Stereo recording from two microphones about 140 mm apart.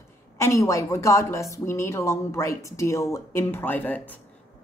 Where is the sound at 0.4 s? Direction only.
20° left (ahead or behind).